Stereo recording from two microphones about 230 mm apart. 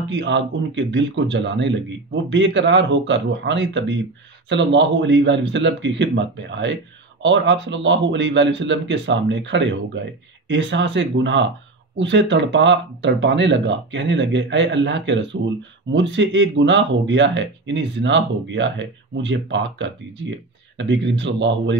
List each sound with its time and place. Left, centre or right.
0.1 s speech: right